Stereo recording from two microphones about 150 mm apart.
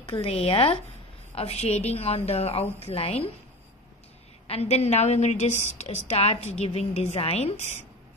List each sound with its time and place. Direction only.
0.0 s a woman's voice: 40° left (ahead or behind)
4.5 s a woman's voice: 45° left (ahead or behind)